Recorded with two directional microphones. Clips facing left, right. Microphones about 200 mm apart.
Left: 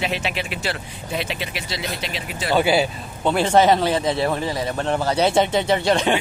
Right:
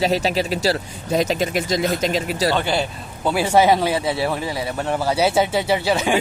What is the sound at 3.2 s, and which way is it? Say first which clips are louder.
Speech: even; 10° right (ahead or behind).